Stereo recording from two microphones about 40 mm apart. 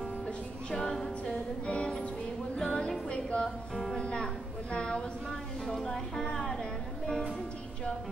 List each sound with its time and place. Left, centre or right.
0.7 s a sound: centre
1.3 s music: left
3.4 s music: centre
3.9 s music: left
5.7 s speech: centre
6.3 s a sound: centre
6.6 s music: centre